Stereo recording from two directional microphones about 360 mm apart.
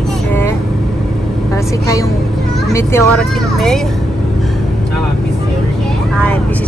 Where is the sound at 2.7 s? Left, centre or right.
Centre.